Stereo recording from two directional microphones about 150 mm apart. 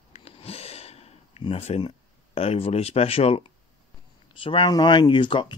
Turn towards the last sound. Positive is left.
turn(degrees=30)  # may be behind; listen again after turning